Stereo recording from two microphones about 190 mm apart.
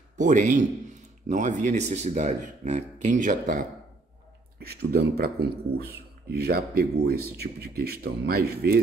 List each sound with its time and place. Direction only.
0.2 s speech: 40° right (ahead or behind)
4.6 s speech: 55° right (ahead or behind)